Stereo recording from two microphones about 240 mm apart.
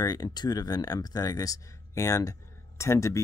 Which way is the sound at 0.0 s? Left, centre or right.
Centre.